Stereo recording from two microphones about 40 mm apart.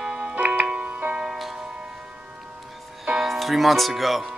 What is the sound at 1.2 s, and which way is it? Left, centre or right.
Music, centre.